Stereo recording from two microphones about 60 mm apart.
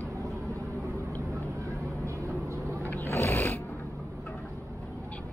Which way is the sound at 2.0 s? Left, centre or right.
Right.